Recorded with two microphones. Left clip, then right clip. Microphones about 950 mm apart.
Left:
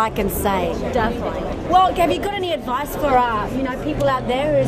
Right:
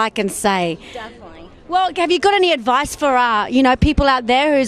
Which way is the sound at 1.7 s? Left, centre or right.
Right.